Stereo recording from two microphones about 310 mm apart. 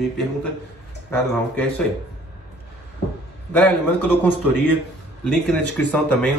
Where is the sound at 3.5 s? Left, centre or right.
Centre.